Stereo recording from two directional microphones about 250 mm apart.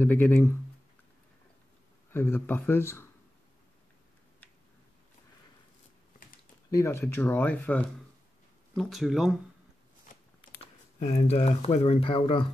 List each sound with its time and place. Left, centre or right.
0.0 s speech: centre
2.1 s speech: centre
6.8 s speech: centre
11.0 s speech: left